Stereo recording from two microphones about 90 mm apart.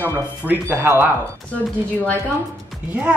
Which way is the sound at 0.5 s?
25° right (ahead or behind).